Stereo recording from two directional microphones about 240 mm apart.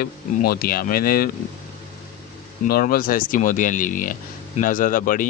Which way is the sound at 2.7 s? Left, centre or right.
Left.